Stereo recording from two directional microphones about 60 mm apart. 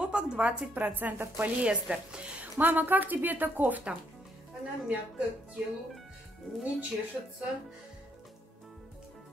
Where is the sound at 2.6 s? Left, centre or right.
Right.